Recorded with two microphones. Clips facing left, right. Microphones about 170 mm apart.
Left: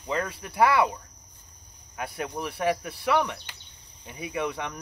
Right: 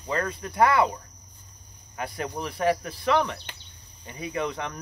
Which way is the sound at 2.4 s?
10° left (ahead or behind).